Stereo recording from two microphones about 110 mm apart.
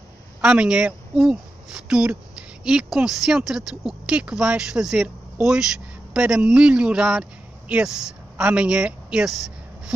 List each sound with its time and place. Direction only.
0.4 s speech: 10° right (ahead or behind)